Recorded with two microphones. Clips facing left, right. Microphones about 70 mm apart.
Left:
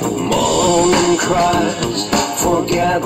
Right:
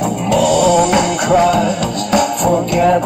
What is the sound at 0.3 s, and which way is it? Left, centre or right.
Music, centre.